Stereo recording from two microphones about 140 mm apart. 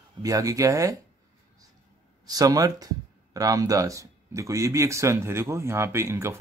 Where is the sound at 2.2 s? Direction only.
25° right (ahead or behind).